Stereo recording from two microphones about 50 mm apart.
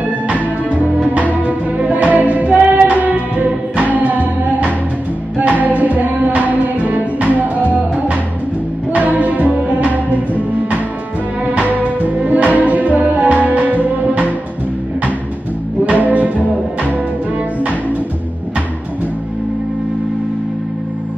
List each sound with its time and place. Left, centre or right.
0.7 s music: right
8.9 s music: right
11.5 s music: right
15.8 s music: right